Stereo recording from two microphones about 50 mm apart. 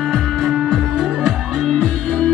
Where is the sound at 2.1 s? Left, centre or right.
Left.